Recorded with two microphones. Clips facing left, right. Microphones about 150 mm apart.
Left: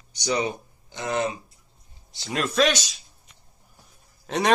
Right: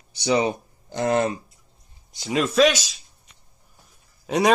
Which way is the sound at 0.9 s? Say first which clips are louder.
Right 5 dB; 50° right (ahead or behind).